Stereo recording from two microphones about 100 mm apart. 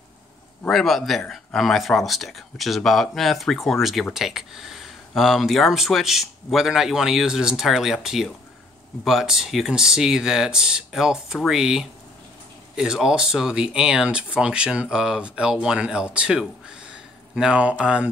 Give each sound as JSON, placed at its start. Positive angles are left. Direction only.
{"t": 0.7, "sound": "speech", "side_deg": 0}